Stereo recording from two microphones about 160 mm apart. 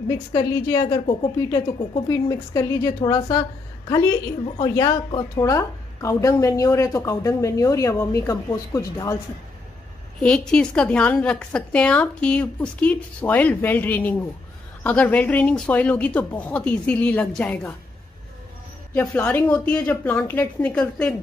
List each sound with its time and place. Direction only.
0.3 s a woman's voice: 25° left (ahead or behind)
10.2 s a woman's voice: 5° left (ahead or behind)
18.9 s a woman's voice: 10° left (ahead or behind)